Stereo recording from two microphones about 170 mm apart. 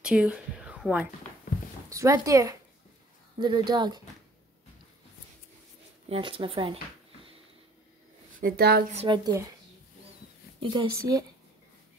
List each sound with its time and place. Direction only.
0.0 s whispering: 5° right (ahead or behind)
1.9 s speech: 20° right (ahead or behind)
6.0 s speech: 35° right (ahead or behind)
8.4 s speech: 65° right (ahead or behind)
8.9 s speech: 30° right (ahead or behind)
10.6 s speech: 25° right (ahead or behind)